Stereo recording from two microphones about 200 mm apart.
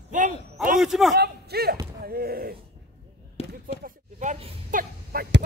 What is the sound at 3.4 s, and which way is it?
Basketball bounce, 30° left (ahead or behind).